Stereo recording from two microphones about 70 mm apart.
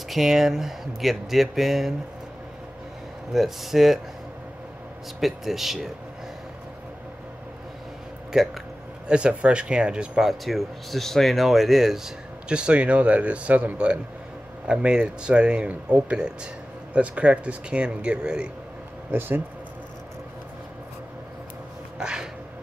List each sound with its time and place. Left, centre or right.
0.1 s speech: centre
3.3 s speech: centre
5.2 s speech: centre
8.3 s speech: centre
19.1 s speech: right
21.9 s cat: centre